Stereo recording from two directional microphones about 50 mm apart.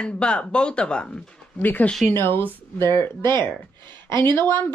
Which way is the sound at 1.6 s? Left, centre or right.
Left.